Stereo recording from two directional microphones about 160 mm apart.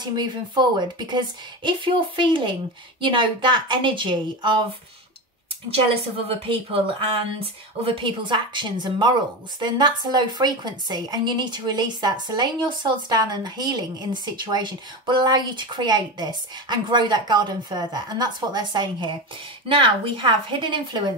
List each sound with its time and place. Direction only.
0.0 s a woman's voice: 30° right (ahead or behind)
5.8 s a woman's voice: 35° right (ahead or behind)